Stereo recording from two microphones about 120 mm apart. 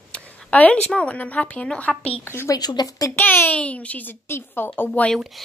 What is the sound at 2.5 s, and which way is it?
Speech, 35° left (ahead or behind).